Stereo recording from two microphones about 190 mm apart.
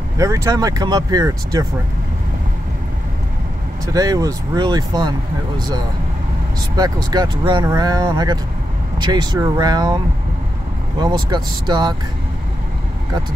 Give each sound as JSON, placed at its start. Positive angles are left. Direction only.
{"t": 0.2, "sound": "speech", "side_deg": -20}
{"t": 3.9, "sound": "speech", "side_deg": -20}
{"t": 6.8, "sound": "speech", "side_deg": -20}